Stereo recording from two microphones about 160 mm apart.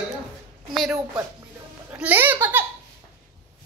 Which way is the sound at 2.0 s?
10° right (ahead or behind).